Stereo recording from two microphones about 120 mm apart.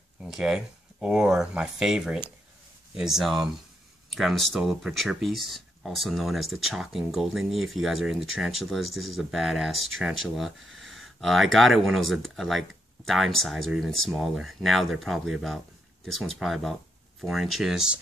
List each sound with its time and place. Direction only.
0.2 s speech: 5° right (ahead or behind)